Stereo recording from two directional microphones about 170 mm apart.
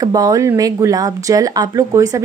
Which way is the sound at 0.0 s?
20° right (ahead or behind).